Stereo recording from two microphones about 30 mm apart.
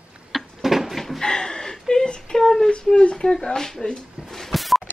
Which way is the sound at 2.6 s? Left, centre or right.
Left.